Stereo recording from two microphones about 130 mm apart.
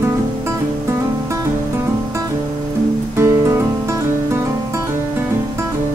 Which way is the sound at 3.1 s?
20° right (ahead or behind).